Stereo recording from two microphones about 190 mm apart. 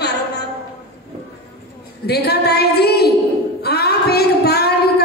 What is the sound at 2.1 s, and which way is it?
A woman's voice, 55° left (ahead or behind).